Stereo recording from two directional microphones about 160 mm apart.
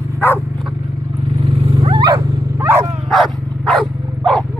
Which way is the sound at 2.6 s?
15° right (ahead or behind).